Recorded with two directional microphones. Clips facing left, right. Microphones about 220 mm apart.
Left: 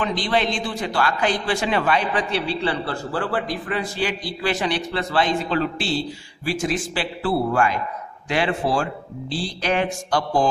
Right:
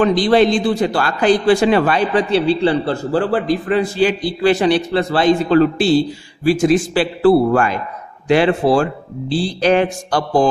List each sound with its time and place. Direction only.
0.0 s a man's voice: 40° right (ahead or behind)